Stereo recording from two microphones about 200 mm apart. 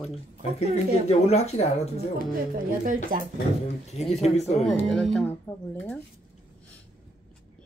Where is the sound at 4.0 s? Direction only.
35° left (ahead or behind).